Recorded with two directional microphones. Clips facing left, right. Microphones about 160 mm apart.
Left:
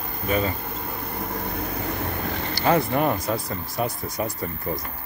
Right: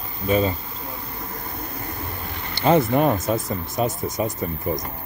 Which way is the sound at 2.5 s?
25° right (ahead or behind).